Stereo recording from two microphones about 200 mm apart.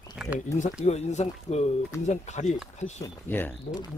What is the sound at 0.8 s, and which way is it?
Speech, 35° left (ahead or behind).